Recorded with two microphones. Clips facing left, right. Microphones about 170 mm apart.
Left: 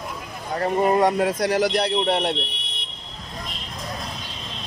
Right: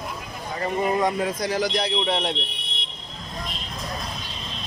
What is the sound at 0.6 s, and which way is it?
Speech, 45° left (ahead or behind).